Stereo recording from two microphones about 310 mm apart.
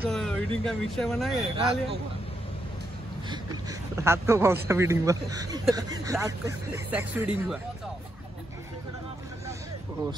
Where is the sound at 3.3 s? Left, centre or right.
Centre.